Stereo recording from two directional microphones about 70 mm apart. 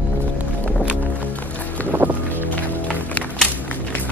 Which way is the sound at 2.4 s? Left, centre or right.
Left.